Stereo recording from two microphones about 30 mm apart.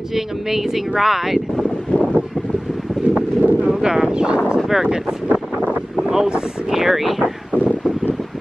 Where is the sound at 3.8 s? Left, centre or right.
Right.